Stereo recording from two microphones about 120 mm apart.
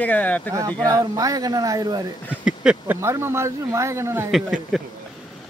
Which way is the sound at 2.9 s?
20° right (ahead or behind).